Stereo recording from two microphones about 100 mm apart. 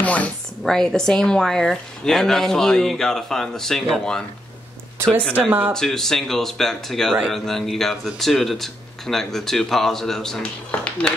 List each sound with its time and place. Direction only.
0.0 s a sound: 15° left (ahead or behind)
0.7 s speech: 5° left (ahead or behind)
5.4 s speech: 15° right (ahead or behind)
5.7 s speech: 5° left (ahead or behind)